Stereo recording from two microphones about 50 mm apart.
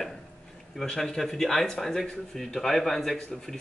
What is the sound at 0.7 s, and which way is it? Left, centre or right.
Speech, centre.